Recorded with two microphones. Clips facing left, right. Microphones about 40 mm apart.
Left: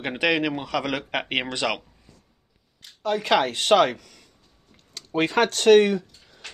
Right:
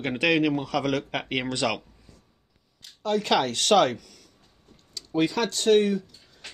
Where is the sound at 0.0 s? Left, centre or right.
Centre.